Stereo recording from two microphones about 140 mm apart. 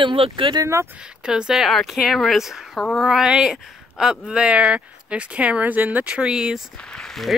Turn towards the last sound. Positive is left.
turn(degrees=5)  # may be behind; listen again after turning